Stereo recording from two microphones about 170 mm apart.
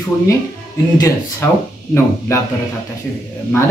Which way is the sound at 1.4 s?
15° left (ahead or behind).